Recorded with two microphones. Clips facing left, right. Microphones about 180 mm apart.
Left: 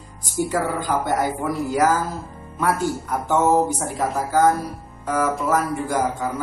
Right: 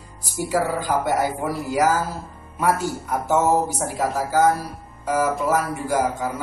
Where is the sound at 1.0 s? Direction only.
5° right (ahead or behind).